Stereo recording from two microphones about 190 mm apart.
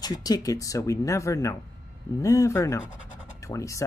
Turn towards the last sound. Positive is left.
turn(degrees=15)  # may be behind; listen again after turning